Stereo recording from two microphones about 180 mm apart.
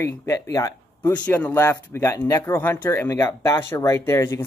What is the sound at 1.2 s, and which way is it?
Speech, 10° left (ahead or behind).